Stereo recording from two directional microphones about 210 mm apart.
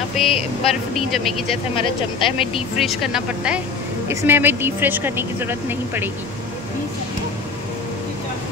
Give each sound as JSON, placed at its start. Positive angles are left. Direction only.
{"t": 0.2, "sound": "speech", "side_deg": 0}
{"t": 1.8, "sound": "speech", "side_deg": 25}
{"t": 2.8, "sound": "speech", "side_deg": 0}